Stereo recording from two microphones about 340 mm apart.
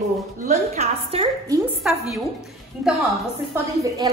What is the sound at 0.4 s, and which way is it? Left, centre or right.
A woman's voice, centre.